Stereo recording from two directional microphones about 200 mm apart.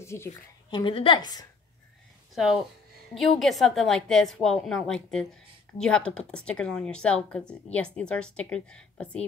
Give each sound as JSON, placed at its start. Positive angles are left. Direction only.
{"t": 0.0, "sound": "speech", "side_deg": 15}
{"t": 2.3, "sound": "speech", "side_deg": 0}